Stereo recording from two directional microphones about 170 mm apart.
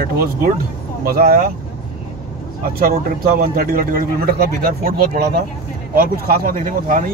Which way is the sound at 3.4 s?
60° right (ahead or behind).